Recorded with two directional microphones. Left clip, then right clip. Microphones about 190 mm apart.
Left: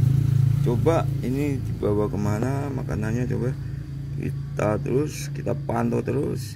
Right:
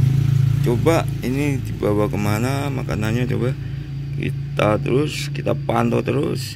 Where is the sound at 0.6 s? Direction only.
5° right (ahead or behind).